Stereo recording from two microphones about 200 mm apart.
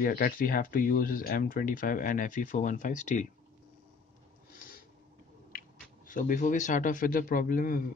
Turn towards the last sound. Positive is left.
turn(degrees=45)  # may be behind; listen again after turning